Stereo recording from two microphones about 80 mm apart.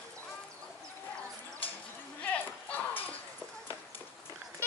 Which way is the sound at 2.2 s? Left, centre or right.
Left.